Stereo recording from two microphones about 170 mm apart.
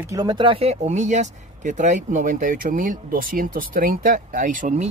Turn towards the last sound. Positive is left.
turn(degrees=-50)  # may be behind; listen again after turning